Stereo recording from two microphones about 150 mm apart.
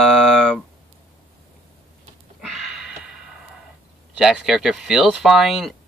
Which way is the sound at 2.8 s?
5° right (ahead or behind).